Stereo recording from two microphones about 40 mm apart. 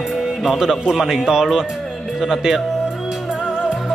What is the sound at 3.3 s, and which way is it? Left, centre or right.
Music, centre.